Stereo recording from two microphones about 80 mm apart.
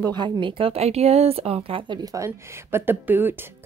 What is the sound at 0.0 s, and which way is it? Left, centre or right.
Speech, right.